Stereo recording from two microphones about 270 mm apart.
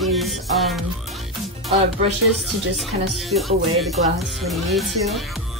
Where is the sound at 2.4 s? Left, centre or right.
Centre.